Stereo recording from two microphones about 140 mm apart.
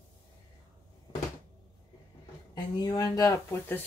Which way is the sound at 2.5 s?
30° left (ahead or behind).